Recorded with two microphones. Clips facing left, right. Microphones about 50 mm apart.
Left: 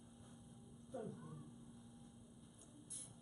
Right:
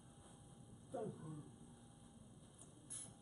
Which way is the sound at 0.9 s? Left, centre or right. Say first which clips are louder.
Right 2 dB; centre.